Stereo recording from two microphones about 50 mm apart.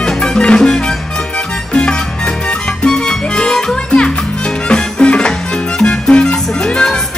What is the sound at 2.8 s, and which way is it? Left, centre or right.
Music, centre.